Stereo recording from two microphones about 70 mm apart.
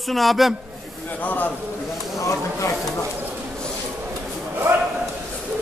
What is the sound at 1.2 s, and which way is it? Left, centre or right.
Speech, left.